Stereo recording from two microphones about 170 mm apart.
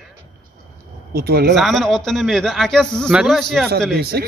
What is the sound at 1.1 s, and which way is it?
Speech, 65° right (ahead or behind).